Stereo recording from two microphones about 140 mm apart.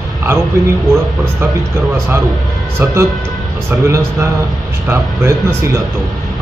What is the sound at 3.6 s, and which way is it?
A man's voice, 20° right (ahead or behind).